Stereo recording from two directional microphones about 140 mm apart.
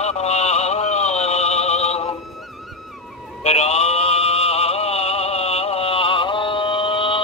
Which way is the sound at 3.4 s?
50° left (ahead or behind).